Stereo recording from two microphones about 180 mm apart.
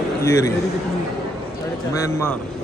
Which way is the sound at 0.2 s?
15° left (ahead or behind).